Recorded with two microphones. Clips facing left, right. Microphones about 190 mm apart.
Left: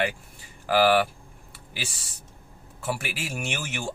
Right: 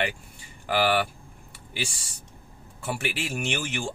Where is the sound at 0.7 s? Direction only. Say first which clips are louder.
Left 4 dB; centre (ahead or behind).